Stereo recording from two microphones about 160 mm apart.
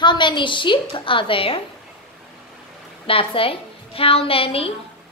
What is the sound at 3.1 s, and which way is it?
A woman's voice, 35° left (ahead or behind).